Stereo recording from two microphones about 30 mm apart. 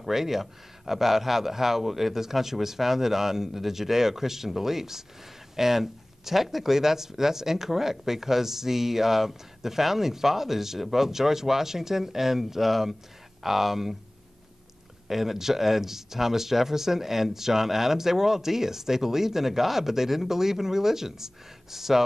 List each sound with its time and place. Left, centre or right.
0.0 s speech: centre
15.0 s speech: centre